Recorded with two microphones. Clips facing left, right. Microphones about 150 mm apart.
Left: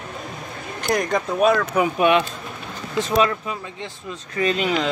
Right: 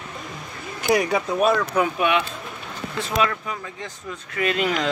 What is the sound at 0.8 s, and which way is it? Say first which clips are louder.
Speech: right 1 dB; 10° right (ahead or behind).